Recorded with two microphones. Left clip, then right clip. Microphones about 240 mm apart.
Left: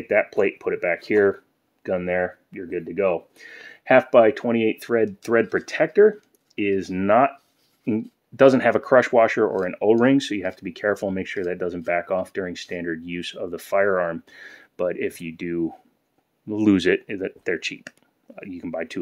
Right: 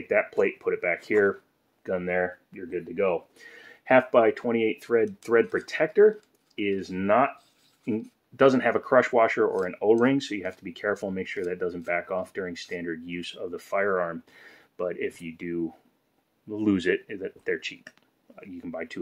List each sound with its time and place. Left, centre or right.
0.1 s speech: left